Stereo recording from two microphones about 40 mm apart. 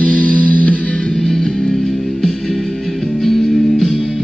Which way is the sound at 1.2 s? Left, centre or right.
Centre.